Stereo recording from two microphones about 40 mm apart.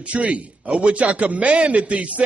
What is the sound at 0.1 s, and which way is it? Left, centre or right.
A man's voice, right.